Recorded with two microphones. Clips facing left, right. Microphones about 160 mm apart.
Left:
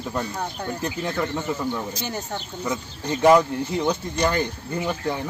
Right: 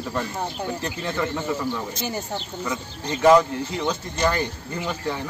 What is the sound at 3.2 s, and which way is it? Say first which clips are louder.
Speech: even; 15° left (ahead or behind).